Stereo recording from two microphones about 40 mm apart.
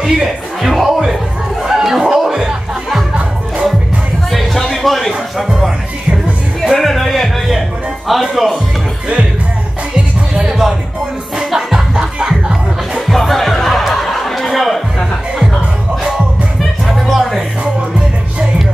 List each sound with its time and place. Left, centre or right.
0.0 s music: centre
1.6 s chatter: centre
2.0 s music: centre
4.3 s music: centre
6.7 s music: centre
8.1 s speech: centre
9.9 s music: right
13.0 s music: centre
16.8 s music: centre